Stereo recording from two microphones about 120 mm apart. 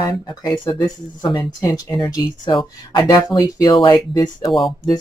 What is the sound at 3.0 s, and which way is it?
Speech, 30° left (ahead or behind).